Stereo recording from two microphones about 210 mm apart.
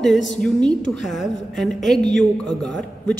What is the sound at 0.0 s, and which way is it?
A woman's voice, 5° left (ahead or behind).